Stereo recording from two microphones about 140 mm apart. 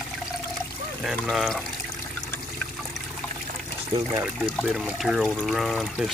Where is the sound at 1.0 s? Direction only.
Centre (ahead or behind).